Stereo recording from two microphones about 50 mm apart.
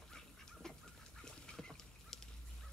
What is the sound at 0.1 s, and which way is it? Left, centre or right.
Goose, centre.